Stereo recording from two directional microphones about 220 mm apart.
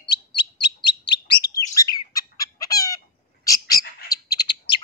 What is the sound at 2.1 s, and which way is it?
Chicken, 15° left (ahead or behind).